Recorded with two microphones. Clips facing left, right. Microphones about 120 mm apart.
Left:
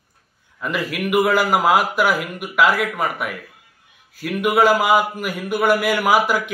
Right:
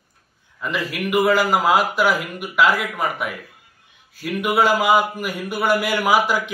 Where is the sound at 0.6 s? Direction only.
5° left (ahead or behind).